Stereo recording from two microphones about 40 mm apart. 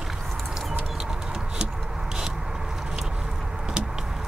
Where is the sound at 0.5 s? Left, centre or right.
Centre.